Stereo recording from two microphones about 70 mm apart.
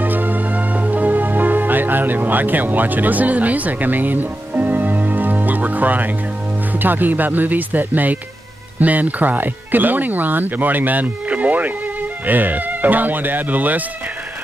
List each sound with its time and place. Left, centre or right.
0.0 s music: right
6.8 s speech: right